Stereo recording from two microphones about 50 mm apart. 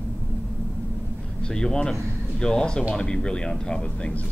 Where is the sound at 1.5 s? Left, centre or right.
Centre.